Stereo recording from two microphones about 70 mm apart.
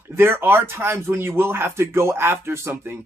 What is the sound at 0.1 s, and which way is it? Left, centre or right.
Speech, right.